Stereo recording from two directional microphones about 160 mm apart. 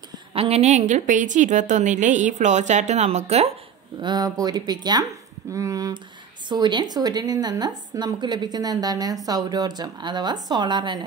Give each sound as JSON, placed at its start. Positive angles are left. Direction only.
{"t": 0.3, "sound": "a woman's voice", "side_deg": -40}
{"t": 4.0, "sound": "a woman's voice", "side_deg": -25}